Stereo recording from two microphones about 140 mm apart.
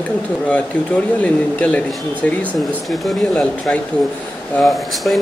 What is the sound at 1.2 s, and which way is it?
Speech, 10° left (ahead or behind).